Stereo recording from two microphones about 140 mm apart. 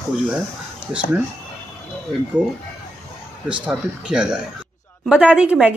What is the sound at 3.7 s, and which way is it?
A woman's voice, 5° right (ahead or behind).